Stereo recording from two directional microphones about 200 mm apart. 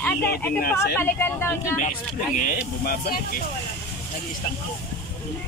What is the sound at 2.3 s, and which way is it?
Speech, 45° left (ahead or behind).